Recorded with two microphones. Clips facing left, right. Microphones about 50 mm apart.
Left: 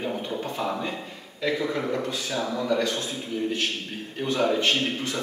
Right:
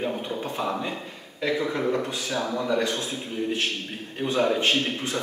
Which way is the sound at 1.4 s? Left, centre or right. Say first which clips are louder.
Right 1 dB; right.